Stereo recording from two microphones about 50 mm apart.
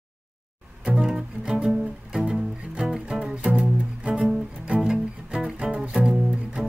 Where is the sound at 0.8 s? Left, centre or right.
Centre.